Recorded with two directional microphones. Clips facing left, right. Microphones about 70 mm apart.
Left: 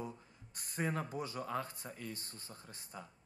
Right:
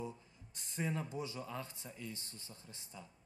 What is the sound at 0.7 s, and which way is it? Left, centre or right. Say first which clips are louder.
A man's voice: left 2 dB; left.